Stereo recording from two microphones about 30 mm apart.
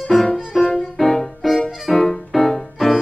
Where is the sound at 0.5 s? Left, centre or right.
Centre.